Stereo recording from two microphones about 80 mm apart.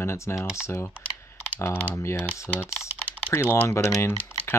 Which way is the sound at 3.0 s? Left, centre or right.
Left.